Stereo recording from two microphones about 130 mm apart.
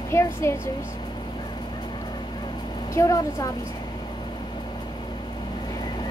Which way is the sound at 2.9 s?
25° left (ahead or behind).